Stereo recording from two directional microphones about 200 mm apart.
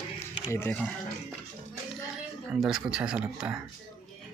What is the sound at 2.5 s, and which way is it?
Speech, 5° right (ahead or behind).